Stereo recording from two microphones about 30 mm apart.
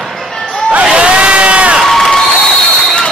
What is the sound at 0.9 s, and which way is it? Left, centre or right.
Crowd, right.